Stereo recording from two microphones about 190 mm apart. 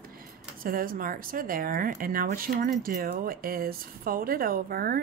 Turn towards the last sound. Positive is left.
turn(degrees=-50)  # may be behind; listen again after turning